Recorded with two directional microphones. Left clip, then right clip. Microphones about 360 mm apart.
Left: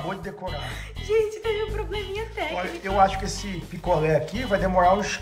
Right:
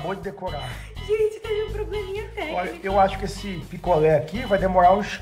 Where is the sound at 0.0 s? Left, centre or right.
Centre.